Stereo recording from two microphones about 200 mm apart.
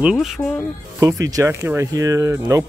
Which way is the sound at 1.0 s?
15° right (ahead or behind).